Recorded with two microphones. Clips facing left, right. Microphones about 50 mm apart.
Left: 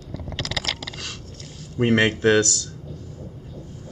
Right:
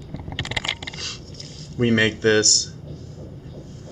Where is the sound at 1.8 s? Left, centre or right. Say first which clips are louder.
Even; centre.